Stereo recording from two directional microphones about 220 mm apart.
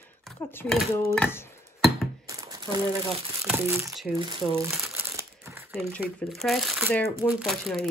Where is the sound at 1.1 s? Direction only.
5° left (ahead or behind).